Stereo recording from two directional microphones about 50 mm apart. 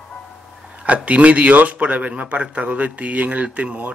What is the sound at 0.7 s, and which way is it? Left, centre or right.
Speech, right.